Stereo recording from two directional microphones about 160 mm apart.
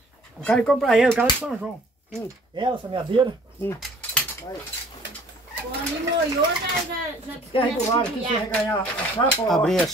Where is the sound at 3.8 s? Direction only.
10° left (ahead or behind).